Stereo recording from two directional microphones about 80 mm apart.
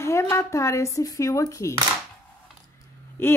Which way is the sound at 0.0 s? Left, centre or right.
Left.